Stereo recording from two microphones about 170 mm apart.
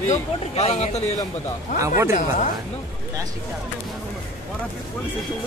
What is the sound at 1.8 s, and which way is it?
Speech, 15° right (ahead or behind).